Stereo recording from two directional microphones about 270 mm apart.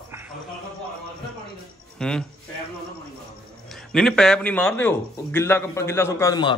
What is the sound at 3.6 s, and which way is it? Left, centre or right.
Speech, centre.